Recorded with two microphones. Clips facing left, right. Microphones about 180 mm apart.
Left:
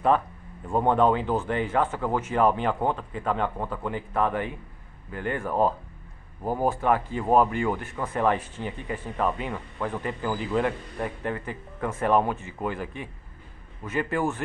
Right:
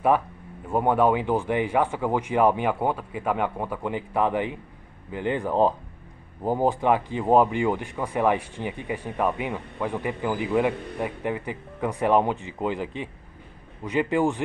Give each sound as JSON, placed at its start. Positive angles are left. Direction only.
{"t": 0.7, "sound": "speech", "side_deg": -10}